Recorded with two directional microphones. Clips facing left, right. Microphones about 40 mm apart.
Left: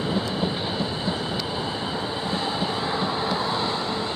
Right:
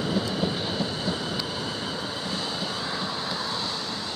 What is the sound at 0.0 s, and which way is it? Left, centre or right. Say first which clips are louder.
Train: left 1 dB; left.